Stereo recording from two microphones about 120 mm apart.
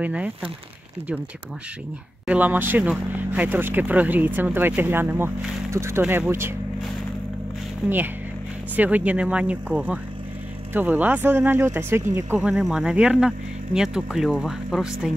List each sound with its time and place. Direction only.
0.0 s speech: 10° right (ahead or behind)
2.2 s speech: 15° right (ahead or behind)
7.8 s speech: 5° right (ahead or behind)
12.4 s speech: 5° right (ahead or behind)